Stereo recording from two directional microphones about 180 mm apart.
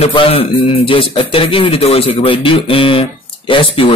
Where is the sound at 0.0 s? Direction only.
30° left (ahead or behind).